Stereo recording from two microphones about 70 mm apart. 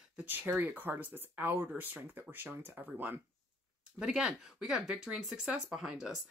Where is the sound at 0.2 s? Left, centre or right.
Right.